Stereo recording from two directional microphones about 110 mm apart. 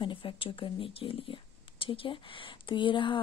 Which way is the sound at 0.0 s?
50° left (ahead or behind).